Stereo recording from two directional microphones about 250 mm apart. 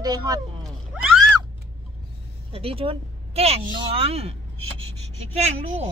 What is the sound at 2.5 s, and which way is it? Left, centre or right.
A woman's voice, right.